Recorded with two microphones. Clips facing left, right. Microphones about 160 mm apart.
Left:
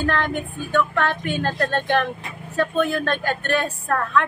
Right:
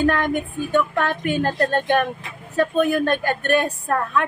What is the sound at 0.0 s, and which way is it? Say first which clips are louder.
Speech: right 3 dB; 15° right (ahead or behind).